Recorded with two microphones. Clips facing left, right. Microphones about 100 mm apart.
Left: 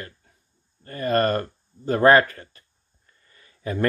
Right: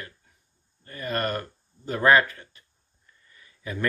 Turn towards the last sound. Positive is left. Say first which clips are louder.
# left 6 dB
turn(degrees=45)  # may be behind; listen again after turning